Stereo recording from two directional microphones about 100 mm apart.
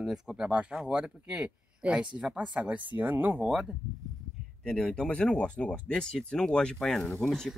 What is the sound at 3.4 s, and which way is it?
Speech, 5° right (ahead or behind).